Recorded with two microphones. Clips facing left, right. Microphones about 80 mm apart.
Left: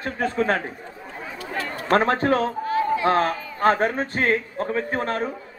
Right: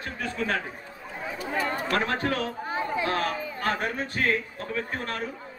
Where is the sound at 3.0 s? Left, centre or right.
Left.